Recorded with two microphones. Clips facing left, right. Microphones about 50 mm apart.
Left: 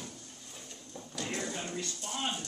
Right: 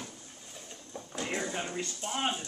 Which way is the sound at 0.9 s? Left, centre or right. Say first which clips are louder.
Right 3 dB; right.